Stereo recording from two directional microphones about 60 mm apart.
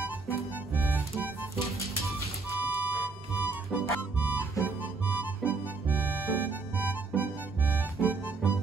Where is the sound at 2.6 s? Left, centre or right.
Right.